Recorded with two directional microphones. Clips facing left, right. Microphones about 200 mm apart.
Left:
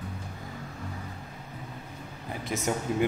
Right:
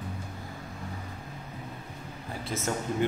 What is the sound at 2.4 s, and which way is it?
Speech, 15° left (ahead or behind).